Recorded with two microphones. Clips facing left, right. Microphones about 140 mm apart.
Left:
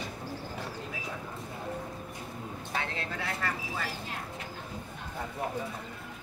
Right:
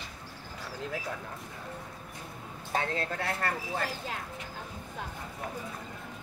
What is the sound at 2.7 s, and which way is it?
Speech, 50° right (ahead or behind).